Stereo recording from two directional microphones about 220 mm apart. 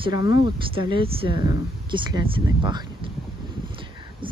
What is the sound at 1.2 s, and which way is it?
Speech, 50° left (ahead or behind).